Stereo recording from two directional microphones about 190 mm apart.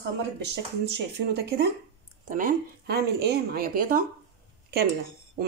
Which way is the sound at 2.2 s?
45° right (ahead or behind).